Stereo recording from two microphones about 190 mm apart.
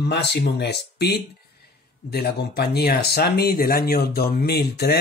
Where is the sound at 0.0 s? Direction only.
60° left (ahead or behind).